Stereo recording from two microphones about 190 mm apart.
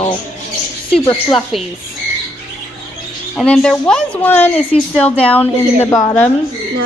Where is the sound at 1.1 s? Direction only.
Centre (ahead or behind).